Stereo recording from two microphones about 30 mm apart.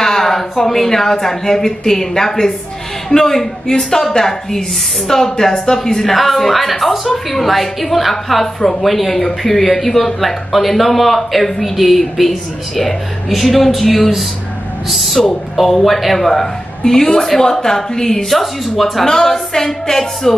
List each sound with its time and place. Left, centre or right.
0.0 s a woman's voice: centre
18.3 s a woman's voice: centre